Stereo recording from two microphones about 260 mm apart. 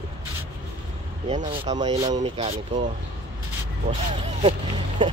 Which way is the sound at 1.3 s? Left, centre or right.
Centre.